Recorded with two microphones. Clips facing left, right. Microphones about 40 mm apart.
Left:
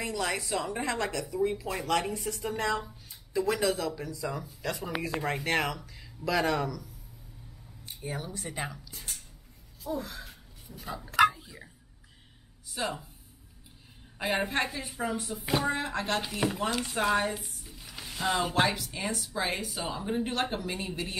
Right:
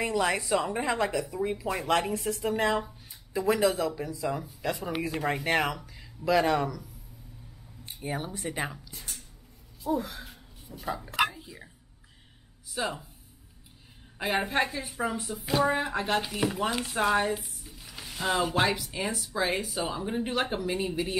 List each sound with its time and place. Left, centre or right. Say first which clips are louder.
0.3 s speech: right 4 dB; centre
2.4 s speech: right 3 dB; centre
8.1 s speech: right 4 dB; right
8.5 s speech: right 2 dB; centre
9.9 s speech: right 4 dB; centre
11.1 s a sound: left 6 dB; centre
12.7 s speech: right 1 dB; centre
14.1 s speech: right 2 dB; centre